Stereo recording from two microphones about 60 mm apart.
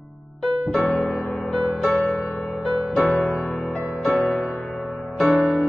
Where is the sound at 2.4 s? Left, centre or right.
Centre.